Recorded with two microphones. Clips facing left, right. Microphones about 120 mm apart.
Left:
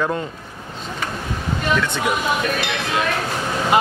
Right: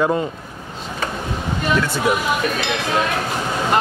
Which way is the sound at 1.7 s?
10° right (ahead or behind).